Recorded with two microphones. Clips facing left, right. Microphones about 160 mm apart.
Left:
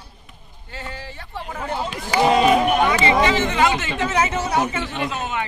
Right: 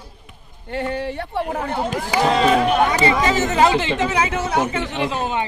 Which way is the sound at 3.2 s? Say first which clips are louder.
Right 1 dB; 40° right (ahead or behind).